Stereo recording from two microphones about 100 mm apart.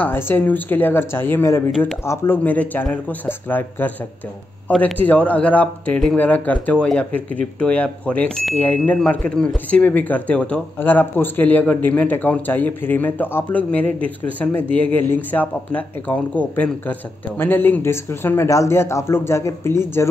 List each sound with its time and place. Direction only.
0.0 s a man's voice: 20° left (ahead or behind)